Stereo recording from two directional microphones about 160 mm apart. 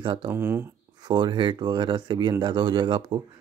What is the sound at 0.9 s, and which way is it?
Speech, 25° right (ahead or behind).